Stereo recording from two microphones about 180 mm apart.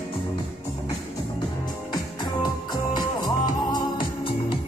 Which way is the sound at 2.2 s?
25° left (ahead or behind).